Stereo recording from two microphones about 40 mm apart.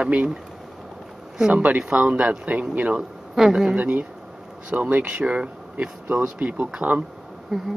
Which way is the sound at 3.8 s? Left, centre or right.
Right.